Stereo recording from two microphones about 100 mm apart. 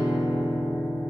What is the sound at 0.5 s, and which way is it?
Music, 20° left (ahead or behind).